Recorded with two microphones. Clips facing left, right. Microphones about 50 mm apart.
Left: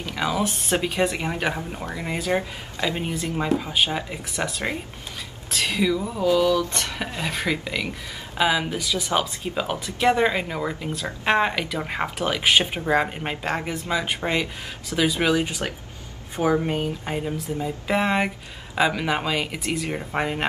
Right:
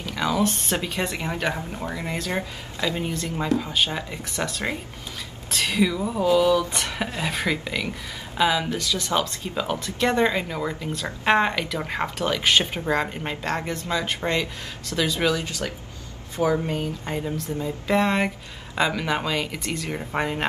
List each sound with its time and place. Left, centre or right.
0.0 s speech: centre
8.4 s speech: centre
15.3 s speech: left; by 20.4 s centre